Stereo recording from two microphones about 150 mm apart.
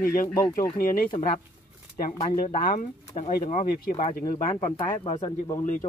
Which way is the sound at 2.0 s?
60° left (ahead or behind).